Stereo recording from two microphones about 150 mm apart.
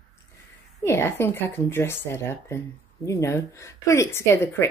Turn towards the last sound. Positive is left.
turn(degrees=15)  # may be behind; listen again after turning